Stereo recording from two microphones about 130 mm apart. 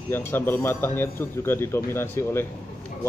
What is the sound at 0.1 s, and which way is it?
A man's voice, 15° left (ahead or behind).